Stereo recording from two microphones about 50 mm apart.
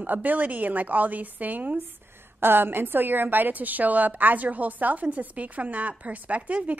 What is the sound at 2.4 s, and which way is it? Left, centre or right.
A woman's voice, right.